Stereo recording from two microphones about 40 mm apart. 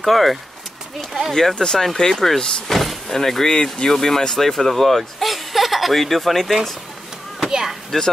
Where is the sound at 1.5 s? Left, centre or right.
Centre.